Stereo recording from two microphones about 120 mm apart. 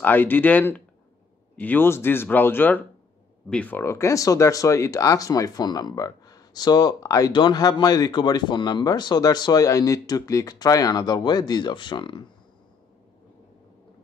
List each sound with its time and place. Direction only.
0.0 s speech: 15° left (ahead or behind); by 12.3 s 40° left (ahead or behind)